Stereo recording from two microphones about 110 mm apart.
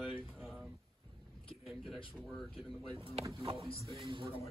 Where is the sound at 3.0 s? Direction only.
65° right (ahead or behind).